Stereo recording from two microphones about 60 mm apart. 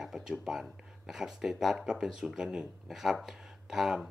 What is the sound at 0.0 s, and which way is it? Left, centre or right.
Speech, centre.